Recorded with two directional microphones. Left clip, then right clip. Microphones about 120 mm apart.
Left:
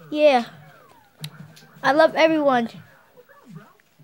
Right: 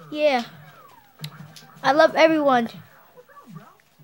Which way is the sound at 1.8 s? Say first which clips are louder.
Even; 10° right (ahead or behind).